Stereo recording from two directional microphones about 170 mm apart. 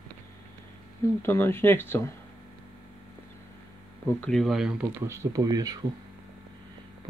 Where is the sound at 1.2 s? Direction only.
15° left (ahead or behind).